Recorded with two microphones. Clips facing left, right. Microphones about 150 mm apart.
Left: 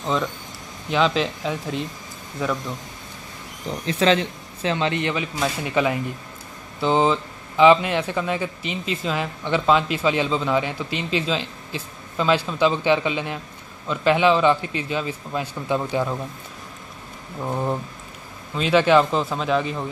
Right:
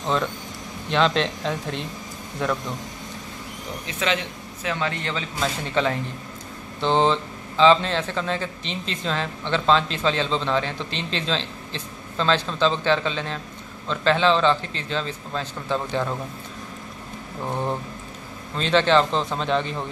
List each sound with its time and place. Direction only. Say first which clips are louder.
0.0 s speech: even; centre (ahead or behind)
3.8 s speech: left 7 dB; 35° left (ahead or behind)
4.6 s a man's voice: left 4 dB; 20° left (ahead or behind)
17.5 s speech: left 2 dB; 5° left (ahead or behind)